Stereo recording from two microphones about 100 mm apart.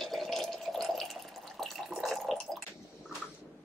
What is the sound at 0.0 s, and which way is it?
Water, centre (ahead or behind).